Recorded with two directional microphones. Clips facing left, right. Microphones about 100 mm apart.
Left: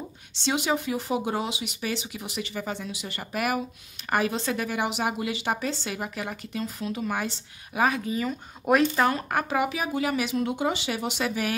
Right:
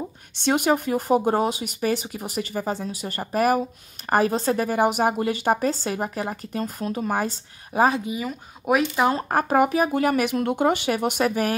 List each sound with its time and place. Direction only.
0.4 s a woman's voice: 50° right (ahead or behind); by 8.0 s 35° right (ahead or behind)
8.0 s speech: 15° right (ahead or behind)
9.3 s speech: 40° right (ahead or behind)